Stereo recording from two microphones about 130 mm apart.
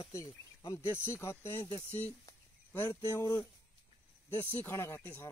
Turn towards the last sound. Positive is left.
turn(degrees=15)  # may be behind; listen again after turning